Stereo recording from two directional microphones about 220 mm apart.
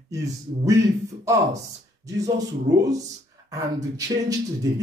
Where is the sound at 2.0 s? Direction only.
15° right (ahead or behind).